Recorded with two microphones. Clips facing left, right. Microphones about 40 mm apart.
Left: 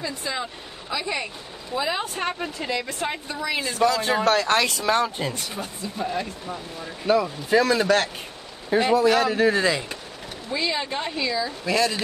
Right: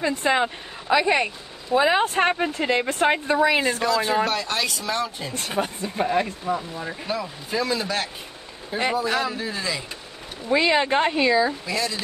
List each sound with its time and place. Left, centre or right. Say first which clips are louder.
0.0 s speech: right 8 dB; right
4.3 s speech: left 5 dB; left
5.3 s speech: right 6 dB; right
7.1 s speech: left 10 dB; left
10.5 s speech: right 7 dB; right
11.6 s speech: left 4 dB; left